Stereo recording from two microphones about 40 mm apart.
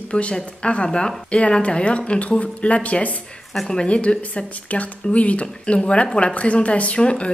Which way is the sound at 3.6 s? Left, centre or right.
Centre.